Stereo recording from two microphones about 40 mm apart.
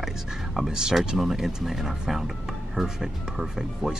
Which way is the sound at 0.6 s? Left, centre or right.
Centre.